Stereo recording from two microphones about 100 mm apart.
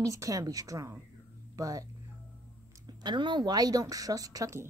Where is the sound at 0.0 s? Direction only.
35° right (ahead or behind).